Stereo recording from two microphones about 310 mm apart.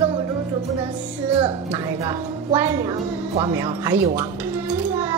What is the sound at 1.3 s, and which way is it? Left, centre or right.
A woman's voice, centre.